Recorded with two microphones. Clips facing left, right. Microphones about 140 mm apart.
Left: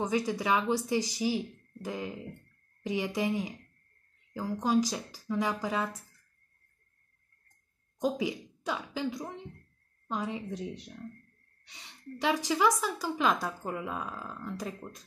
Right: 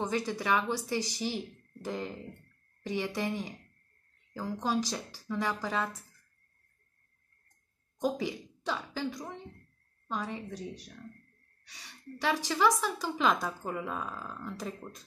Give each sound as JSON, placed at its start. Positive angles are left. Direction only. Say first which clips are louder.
{"t": 0.0, "sound": "speech", "louder": "left 2 dB", "side_deg": 15}
{"t": 8.0, "sound": "a woman's voice", "louder": "left 1 dB", "side_deg": 15}
{"t": 13.0, "sound": "a woman's voice", "louder": "even", "side_deg": 0}